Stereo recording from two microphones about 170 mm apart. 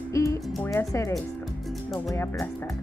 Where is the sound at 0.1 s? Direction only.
20° left (ahead or behind).